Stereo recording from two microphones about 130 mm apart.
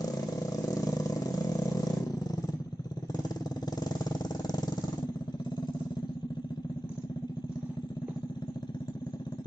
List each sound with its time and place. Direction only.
0.0 s vehicle: 30° left (ahead or behind)
3.8 s vehicle: 30° left (ahead or behind)